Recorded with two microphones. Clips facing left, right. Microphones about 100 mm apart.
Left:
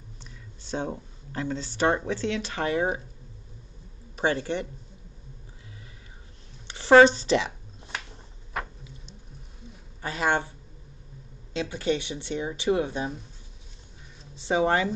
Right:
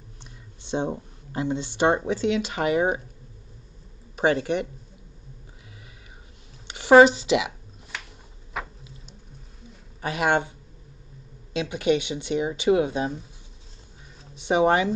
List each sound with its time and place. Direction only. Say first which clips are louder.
0.2 s speech: even; 20° right (ahead or behind)
4.2 s speech: right 4 dB; 20° right (ahead or behind)
6.7 s speech: right 2 dB; 15° right (ahead or behind)
10.0 s speech: right 3 dB; 20° right (ahead or behind)
11.5 s speech: right 4 dB; 20° right (ahead or behind)
14.3 s speech: right 3 dB; 20° right (ahead or behind)